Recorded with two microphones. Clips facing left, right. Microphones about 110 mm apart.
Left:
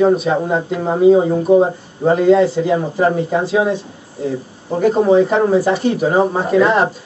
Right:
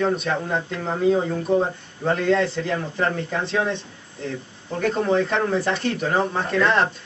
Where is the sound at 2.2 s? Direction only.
10° left (ahead or behind).